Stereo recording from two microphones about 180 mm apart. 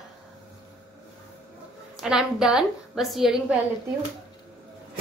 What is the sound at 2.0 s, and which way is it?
A woman's voice, centre (ahead or behind).